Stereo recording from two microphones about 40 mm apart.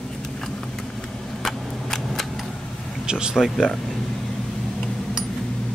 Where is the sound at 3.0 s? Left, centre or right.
Right.